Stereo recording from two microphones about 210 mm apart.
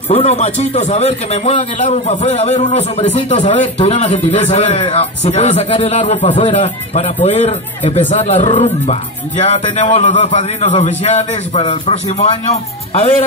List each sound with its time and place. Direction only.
0.1 s a man's voice: 30° left (ahead or behind)